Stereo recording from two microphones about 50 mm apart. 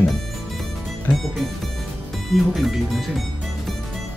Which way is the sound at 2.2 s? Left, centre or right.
Centre.